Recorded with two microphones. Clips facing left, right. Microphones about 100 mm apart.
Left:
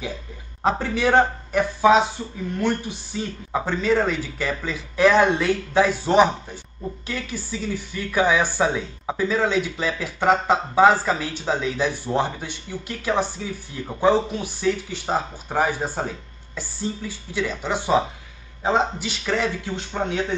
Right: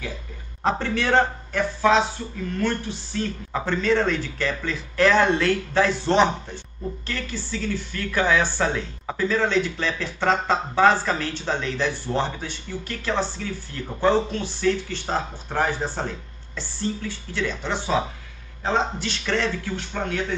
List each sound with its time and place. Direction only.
0.7 s speech: 10° left (ahead or behind)